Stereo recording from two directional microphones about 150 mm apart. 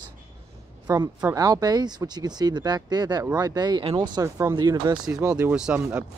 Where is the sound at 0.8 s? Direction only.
20° right (ahead or behind).